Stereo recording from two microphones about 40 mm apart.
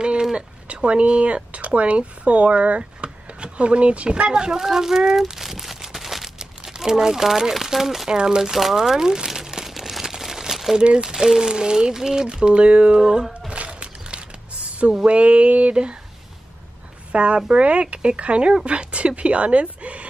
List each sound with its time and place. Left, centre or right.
0.0 s a sound: centre
0.7 s speech: right
4.3 s speech: centre
5.3 s crumpling: centre
6.3 s speech: centre
8.1 s speech: right
8.4 s crumpling: centre
10.8 s speech: right
13.7 s a sound: right
15.0 s speech: right
17.1 s speech: right